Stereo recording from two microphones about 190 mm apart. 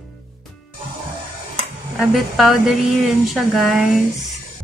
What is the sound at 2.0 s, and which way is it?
A woman's voice, centre (ahead or behind).